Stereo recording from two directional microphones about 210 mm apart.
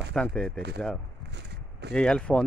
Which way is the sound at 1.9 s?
5° left (ahead or behind).